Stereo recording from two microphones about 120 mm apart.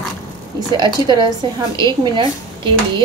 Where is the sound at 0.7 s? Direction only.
40° right (ahead or behind).